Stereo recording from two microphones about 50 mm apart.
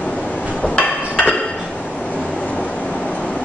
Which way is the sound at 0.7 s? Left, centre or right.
Left.